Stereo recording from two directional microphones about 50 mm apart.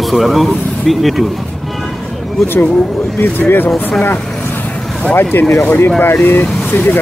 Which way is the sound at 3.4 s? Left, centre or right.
Left.